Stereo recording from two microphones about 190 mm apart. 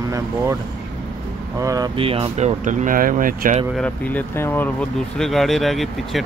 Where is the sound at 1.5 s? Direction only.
20° right (ahead or behind); by 3.6 s 45° right (ahead or behind).